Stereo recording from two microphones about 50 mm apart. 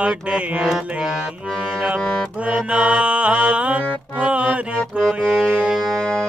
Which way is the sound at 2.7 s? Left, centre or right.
Right.